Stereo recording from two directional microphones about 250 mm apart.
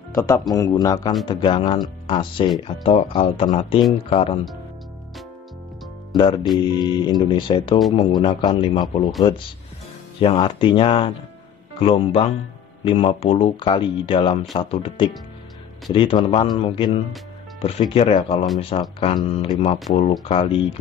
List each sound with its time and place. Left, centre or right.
0.1 s speech: centre
6.1 s speech: centre
10.2 s speech: left